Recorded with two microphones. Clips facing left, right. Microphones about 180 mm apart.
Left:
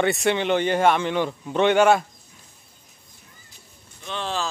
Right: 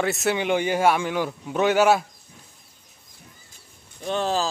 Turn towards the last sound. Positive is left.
turn(degrees=-40)  # may be behind; listen again after turning